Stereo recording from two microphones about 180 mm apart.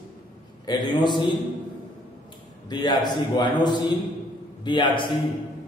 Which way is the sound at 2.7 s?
25° left (ahead or behind).